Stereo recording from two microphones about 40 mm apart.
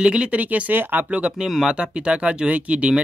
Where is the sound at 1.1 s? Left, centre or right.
Right.